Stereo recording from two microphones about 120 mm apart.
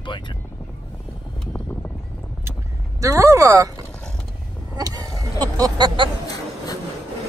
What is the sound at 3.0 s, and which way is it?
Speech, 25° right (ahead or behind).